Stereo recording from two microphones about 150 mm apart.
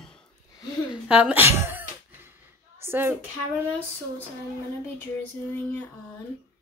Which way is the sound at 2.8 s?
15° right (ahead or behind).